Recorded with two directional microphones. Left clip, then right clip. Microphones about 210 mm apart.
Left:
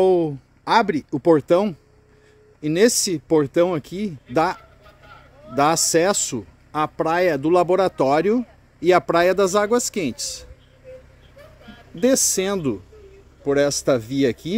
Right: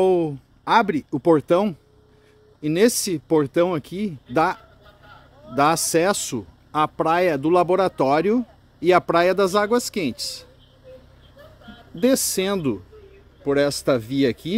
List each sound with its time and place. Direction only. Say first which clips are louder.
0.0 s speech: left 2 dB; 5° left (ahead or behind)
4.6 s a sound: left 2 dB; 30° left (ahead or behind)
5.6 s speech: left 1 dB; centre (ahead or behind)
12.0 s speech: left 1 dB; centre (ahead or behind)